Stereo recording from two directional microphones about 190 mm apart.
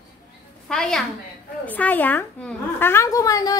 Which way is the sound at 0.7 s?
5° left (ahead or behind).